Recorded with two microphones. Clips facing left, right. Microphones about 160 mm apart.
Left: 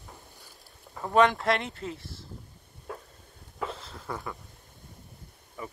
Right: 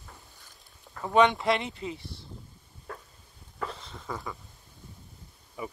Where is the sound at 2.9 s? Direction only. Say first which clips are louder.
Left 2 dB; 5° left (ahead or behind).